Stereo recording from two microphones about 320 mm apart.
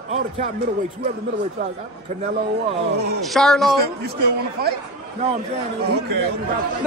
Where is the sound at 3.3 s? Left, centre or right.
Centre.